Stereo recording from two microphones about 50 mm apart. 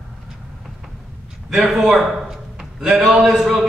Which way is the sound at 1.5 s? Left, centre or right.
Centre.